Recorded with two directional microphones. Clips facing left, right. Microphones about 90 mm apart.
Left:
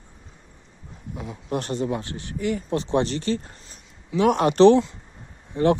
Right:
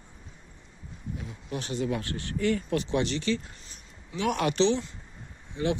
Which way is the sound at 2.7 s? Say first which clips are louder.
Left 4 dB; 30° left (ahead or behind).